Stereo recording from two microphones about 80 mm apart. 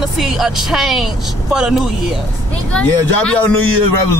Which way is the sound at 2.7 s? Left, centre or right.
Centre.